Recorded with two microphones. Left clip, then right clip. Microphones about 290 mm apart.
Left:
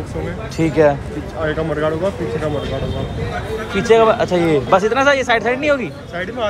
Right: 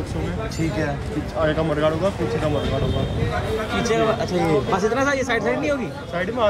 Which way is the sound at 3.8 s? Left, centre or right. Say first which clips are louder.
Left 10 dB; centre.